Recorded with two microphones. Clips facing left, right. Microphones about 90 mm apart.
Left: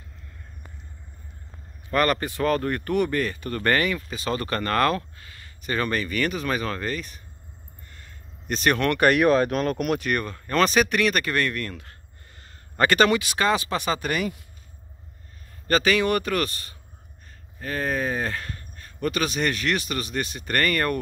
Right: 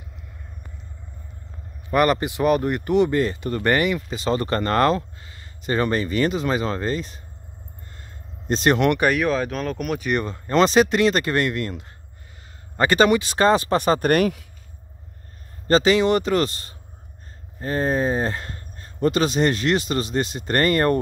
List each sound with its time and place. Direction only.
1.9 s speech: 15° right (ahead or behind)
8.0 s a sound: 30° right (ahead or behind)
9.0 s speech: 5° left (ahead or behind)
10.0 s speech: 20° right (ahead or behind)
13.2 s speech: 35° right (ahead or behind); by 14.4 s 60° right (ahead or behind)
15.6 s speech: 25° right (ahead or behind)